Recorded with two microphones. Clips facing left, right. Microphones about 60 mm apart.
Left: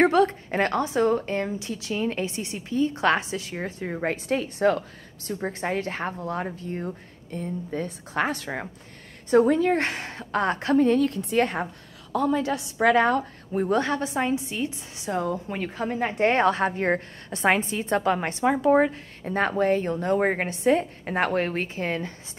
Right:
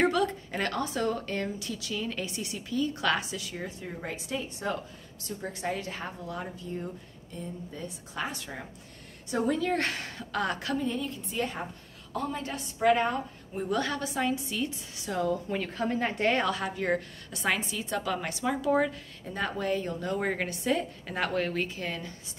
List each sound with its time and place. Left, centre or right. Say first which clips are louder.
0.0 s a woman's voice: left 7 dB; left
5.2 s a woman's voice: left 5 dB; left
9.5 s a woman's voice: left 6 dB; left
10.8 s a woman's voice: left 12 dB; left
12.4 s a woman's voice: left 4 dB; left
13.7 s a woman's voice: left 4 dB; left
16.2 s a woman's voice: left 9 dB; left